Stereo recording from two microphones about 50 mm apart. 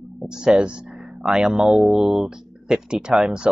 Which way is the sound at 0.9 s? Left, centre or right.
Centre.